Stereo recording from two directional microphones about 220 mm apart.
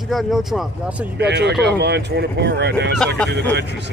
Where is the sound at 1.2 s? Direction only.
50° right (ahead or behind).